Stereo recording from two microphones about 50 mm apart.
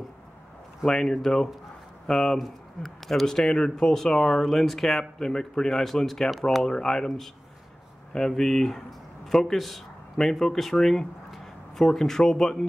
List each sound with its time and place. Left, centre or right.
0.8 s speech: centre
2.3 s speech: centre
8.1 s speech: centre